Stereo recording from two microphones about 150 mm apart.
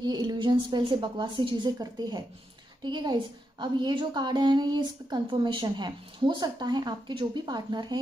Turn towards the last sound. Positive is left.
turn(degrees=-30)  # may be behind; listen again after turning